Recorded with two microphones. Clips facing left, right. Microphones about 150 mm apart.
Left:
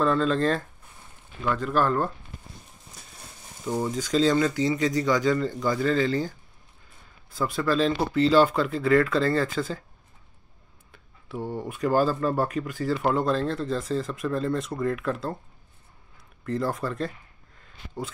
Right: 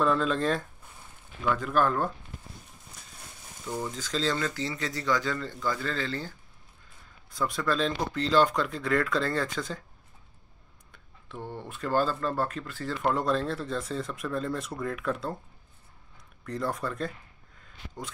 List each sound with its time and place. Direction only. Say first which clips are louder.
0.0 s speech: left 3 dB; centre (ahead or behind)
3.6 s speech: left 6 dB; 25° left (ahead or behind)
3.9 s speech: left 9 dB; 15° left (ahead or behind)
7.2 s speech: left 3 dB; 5° left (ahead or behind)
10.9 s speech: left 8 dB; 10° left (ahead or behind)
16.4 s speech: left 4 dB; centre (ahead or behind)
17.6 s a sound: left 6 dB; centre (ahead or behind)